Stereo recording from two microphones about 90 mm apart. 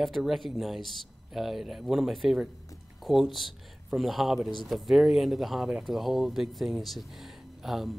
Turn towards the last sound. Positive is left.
turn(degrees=0)  # may be behind; listen again after turning